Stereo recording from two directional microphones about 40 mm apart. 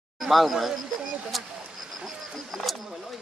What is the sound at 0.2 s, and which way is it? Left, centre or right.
Speech, centre.